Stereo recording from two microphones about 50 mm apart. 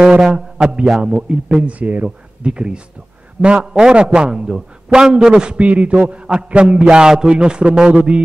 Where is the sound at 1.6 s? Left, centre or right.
Right.